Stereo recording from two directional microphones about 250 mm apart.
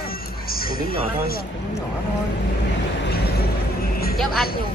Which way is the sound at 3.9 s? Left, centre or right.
Left.